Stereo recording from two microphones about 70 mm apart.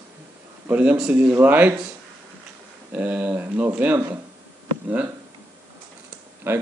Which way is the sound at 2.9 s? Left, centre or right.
Right.